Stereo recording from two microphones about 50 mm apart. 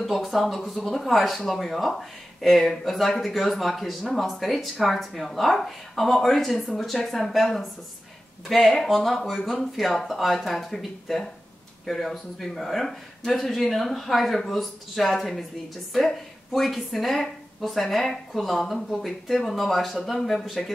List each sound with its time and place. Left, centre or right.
0.0 s speech: centre